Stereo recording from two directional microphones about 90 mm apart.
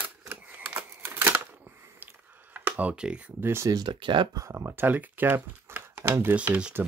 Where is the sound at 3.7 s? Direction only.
60° right (ahead or behind).